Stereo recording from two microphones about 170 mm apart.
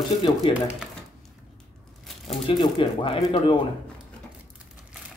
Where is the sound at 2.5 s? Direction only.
30° left (ahead or behind).